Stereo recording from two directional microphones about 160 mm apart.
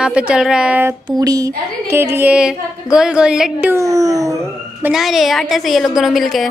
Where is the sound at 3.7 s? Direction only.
20° right (ahead or behind).